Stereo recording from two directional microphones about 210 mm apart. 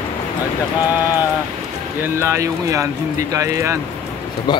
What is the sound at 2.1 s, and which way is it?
Speech, 15° right (ahead or behind).